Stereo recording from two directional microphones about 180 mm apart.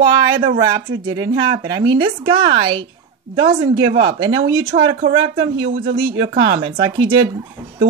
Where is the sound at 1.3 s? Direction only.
25° right (ahead or behind).